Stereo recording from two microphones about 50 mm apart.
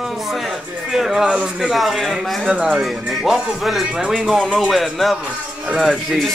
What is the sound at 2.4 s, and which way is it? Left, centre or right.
Speech, right.